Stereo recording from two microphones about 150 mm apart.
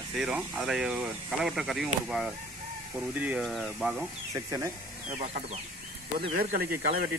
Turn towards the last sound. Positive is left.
turn(degrees=-90)